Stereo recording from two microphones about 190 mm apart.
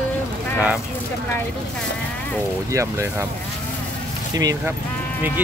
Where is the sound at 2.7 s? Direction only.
15° right (ahead or behind).